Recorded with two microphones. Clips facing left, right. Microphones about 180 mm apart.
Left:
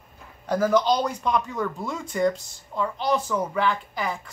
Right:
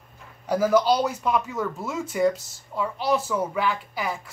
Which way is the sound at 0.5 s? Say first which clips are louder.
Right 1 dB; 10° right (ahead or behind).